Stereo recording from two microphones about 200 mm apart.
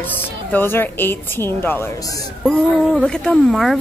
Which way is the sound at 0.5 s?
10° left (ahead or behind).